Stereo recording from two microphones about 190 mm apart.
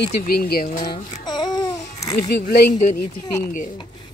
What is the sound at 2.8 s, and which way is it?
Speech, 45° left (ahead or behind).